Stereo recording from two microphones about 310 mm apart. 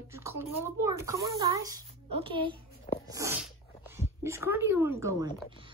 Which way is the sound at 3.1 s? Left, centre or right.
Centre.